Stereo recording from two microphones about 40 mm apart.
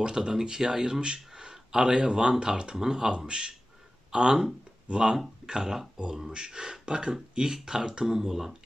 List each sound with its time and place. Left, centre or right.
0.0 s speech: centre